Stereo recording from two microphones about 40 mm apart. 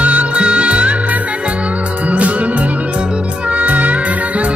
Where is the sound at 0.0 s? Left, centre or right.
Right.